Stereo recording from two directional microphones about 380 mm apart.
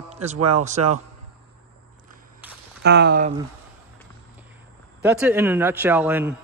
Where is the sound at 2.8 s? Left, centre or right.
Right.